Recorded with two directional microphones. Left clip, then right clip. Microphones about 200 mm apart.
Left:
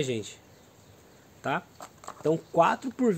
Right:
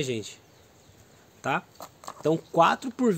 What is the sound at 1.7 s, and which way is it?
Speech, 40° right (ahead or behind).